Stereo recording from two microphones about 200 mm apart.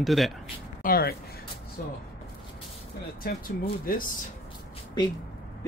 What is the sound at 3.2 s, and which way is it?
Speech, 45° left (ahead or behind).